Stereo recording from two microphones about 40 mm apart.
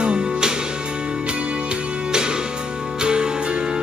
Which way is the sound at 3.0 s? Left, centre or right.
Right.